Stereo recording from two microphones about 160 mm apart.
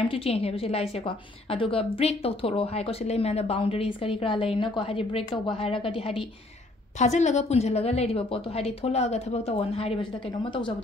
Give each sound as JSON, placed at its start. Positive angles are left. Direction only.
{"t": 0.1, "sound": "a woman's voice", "side_deg": 40}
{"t": 7.0, "sound": "a woman's voice", "side_deg": 45}